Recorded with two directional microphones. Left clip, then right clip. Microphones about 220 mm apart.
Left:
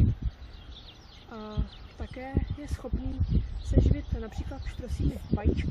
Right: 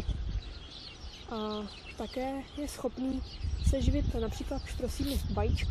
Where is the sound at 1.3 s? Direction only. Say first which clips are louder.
Right 5 dB; 20° right (ahead or behind).